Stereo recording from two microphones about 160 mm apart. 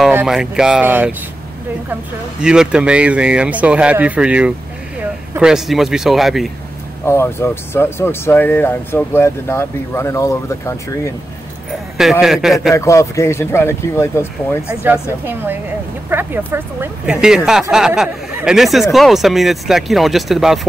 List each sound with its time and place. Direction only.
0.1 s speech: 5° right (ahead or behind)
2.4 s speech: 5° right (ahead or behind)
7.1 s speech: 15° left (ahead or behind)
12.0 s speech: centre (ahead or behind)
12.7 s speech: 20° left (ahead or behind)
14.7 s speech: 10° right (ahead or behind)